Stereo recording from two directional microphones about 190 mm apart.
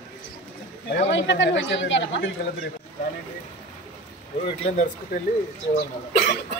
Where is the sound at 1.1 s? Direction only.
70° left (ahead or behind).